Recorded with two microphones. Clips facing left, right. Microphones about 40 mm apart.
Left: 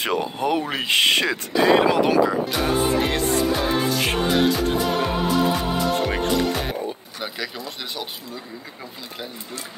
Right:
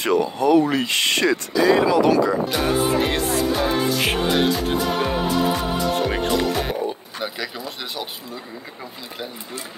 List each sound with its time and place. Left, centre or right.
0.0 s speech: left
1.5 s speech: left
2.0 s speech: left
2.5 s music: centre